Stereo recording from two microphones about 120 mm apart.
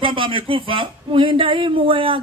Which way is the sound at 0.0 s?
45° right (ahead or behind).